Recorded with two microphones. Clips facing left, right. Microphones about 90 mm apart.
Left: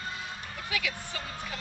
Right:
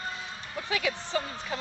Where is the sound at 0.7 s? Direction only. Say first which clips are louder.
Right 6 dB; 30° right (ahead or behind).